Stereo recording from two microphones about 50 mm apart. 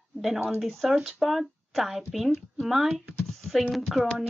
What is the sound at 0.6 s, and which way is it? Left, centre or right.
Speech, centre.